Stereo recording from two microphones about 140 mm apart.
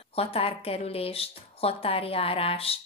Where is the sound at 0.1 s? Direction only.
45° left (ahead or behind).